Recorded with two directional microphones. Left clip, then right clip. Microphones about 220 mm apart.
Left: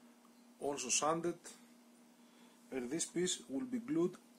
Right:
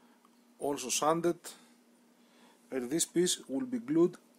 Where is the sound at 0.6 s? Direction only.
35° right (ahead or behind).